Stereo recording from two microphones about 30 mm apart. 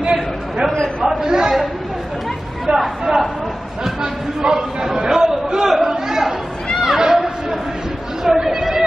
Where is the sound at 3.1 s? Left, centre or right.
Right.